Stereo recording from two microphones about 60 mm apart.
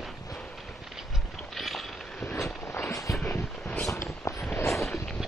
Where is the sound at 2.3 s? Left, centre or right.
Left.